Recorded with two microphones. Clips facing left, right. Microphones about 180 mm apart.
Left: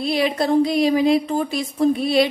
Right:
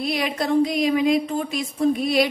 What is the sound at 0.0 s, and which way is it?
Speech, 30° left (ahead or behind).